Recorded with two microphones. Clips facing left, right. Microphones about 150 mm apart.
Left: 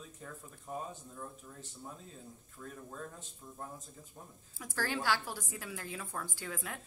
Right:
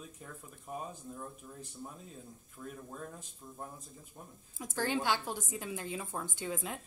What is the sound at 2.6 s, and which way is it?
Speech, 10° right (ahead or behind).